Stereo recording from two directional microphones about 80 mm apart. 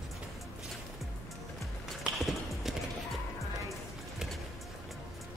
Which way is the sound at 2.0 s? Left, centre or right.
Centre.